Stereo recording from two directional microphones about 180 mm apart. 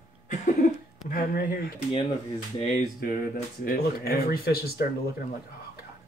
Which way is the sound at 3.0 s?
55° left (ahead or behind).